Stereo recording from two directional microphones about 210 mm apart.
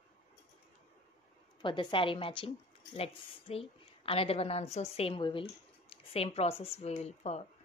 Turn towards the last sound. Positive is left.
turn(degrees=30)  # may be behind; listen again after turning